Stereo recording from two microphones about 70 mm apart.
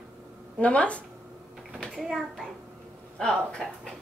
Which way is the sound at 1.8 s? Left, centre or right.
Centre.